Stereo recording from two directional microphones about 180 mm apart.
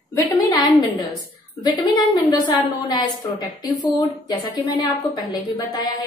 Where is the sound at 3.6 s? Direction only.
20° left (ahead or behind).